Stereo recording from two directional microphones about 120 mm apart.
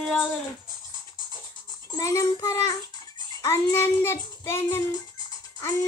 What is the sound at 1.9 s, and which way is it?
A child's voice, 30° left (ahead or behind).